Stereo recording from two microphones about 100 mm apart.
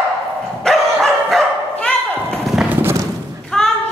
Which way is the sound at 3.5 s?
5° left (ahead or behind).